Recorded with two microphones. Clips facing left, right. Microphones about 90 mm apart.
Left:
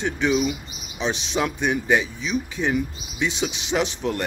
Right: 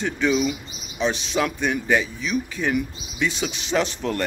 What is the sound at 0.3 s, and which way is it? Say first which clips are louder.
Speech: even; 15° left (ahead or behind).